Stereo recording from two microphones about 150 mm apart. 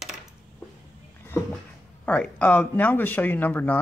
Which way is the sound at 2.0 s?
10° left (ahead or behind).